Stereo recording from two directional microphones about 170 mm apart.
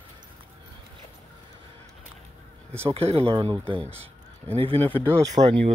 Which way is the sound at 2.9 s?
35° right (ahead or behind).